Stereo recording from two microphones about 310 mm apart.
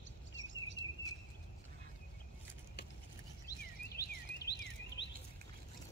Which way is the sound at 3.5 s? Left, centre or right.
Centre.